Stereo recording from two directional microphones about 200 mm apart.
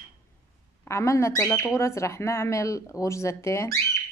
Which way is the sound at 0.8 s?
15° left (ahead or behind).